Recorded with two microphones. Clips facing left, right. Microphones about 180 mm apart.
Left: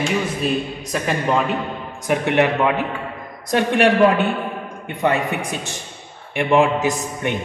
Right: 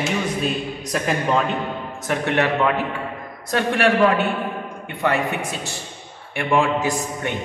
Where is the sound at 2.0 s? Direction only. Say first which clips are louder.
Left 3 dB; 15° left (ahead or behind).